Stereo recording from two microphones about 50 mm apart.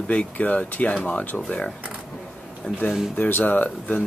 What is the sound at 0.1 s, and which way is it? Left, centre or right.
Speech, left.